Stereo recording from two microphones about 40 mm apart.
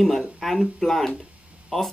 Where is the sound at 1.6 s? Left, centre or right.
Centre.